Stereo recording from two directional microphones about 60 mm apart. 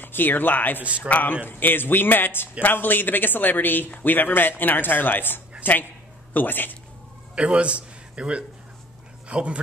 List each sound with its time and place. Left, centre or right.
0.0 s a man's voice: left
7.3 s speech: centre